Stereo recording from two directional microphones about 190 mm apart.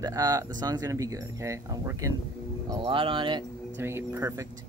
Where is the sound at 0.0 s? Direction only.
20° right (ahead or behind).